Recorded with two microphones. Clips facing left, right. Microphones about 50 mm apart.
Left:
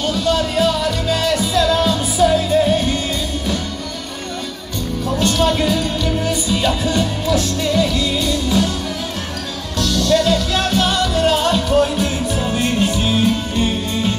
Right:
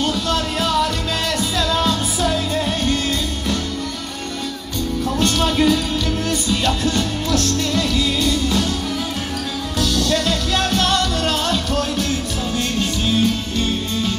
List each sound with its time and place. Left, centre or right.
0.0 s music: centre
5.0 s music: centre
9.8 s music: centre
11.7 s music: centre